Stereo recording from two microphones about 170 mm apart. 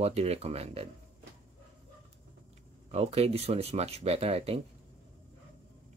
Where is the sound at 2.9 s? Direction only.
35° right (ahead or behind).